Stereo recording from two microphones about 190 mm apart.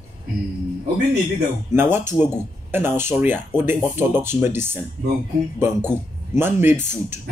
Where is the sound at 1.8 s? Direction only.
10° right (ahead or behind).